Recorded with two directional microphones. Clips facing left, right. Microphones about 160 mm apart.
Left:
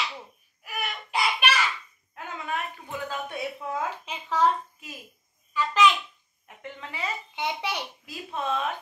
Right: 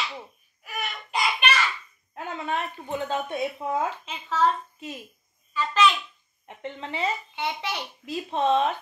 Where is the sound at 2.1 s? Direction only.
30° right (ahead or behind).